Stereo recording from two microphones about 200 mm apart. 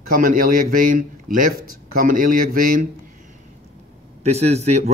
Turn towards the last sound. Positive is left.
turn(degrees=-35)  # may be behind; listen again after turning